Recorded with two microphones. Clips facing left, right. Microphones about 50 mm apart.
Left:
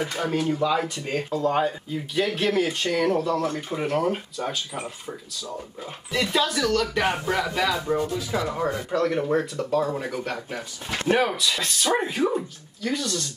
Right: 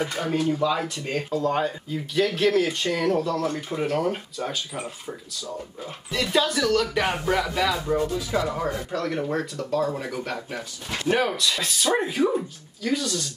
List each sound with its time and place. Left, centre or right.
0.2 s speech: centre
8.6 s speech: left
9.1 s speech: centre